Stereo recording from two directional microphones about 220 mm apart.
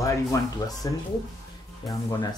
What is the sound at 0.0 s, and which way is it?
Speech, 15° left (ahead or behind).